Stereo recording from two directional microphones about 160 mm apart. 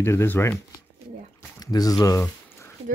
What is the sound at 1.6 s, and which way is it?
Speech, 25° left (ahead or behind).